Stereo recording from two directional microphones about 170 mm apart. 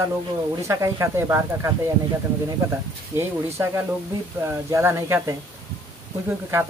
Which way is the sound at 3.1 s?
15° right (ahead or behind).